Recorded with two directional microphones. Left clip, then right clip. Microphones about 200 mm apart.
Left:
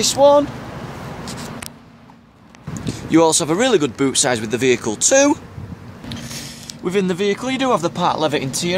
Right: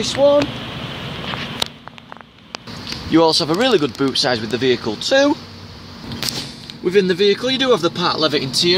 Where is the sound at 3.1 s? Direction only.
10° left (ahead or behind).